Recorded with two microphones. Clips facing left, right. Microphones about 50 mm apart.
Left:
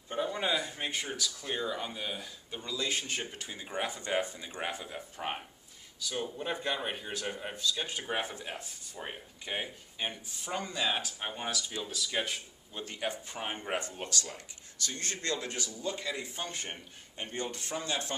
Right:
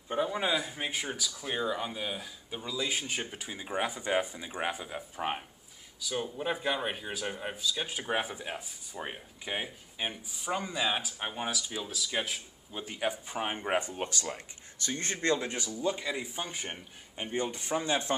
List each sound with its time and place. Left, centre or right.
0.1 s speech: centre